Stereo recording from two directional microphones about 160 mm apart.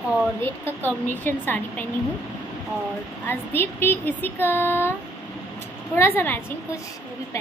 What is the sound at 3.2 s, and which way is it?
Speech, 15° left (ahead or behind).